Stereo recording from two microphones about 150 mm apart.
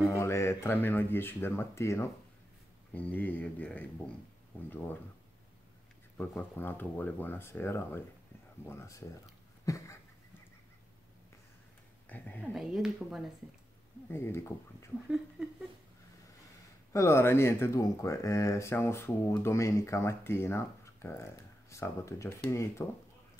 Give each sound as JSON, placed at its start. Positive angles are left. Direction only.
{"t": 0.1, "sound": "speech", "side_deg": 20}
{"t": 6.1, "sound": "speech", "side_deg": 10}
{"t": 12.1, "sound": "speech", "side_deg": 10}
{"t": 12.5, "sound": "speech", "side_deg": 0}
{"t": 14.0, "sound": "speech", "side_deg": 15}
{"t": 15.4, "sound": "speech", "side_deg": -5}
{"t": 16.9, "sound": "speech", "side_deg": 15}